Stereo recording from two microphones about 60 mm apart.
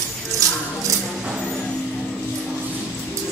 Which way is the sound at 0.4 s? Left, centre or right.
Right.